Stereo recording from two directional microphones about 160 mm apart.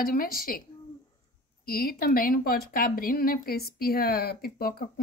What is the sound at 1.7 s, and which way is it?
Speech, 70° left (ahead or behind).